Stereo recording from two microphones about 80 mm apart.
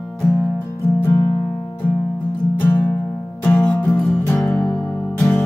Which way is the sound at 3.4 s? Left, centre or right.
Centre.